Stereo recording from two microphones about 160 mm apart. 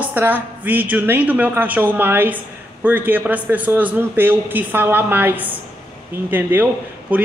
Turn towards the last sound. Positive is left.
turn(degrees=-10)  # may be behind; listen again after turning